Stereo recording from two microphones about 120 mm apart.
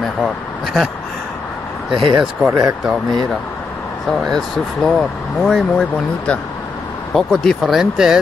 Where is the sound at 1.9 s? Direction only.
45° right (ahead or behind).